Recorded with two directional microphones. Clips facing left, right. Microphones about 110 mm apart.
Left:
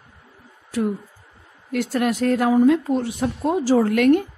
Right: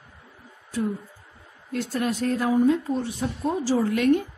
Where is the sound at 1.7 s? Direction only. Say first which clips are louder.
Left 5 dB; 75° left (ahead or behind).